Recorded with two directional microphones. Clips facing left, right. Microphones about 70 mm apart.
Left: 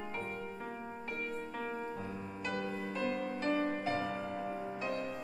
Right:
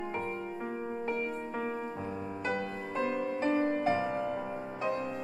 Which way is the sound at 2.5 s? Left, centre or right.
Right.